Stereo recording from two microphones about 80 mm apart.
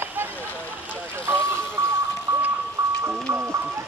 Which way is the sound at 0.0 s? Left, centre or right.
Right.